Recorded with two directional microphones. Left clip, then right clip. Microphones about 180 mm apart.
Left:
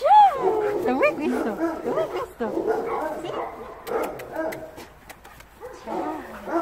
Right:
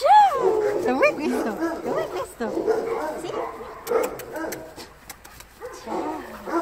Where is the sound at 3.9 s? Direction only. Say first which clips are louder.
Right 4 dB; 20° left (ahead or behind).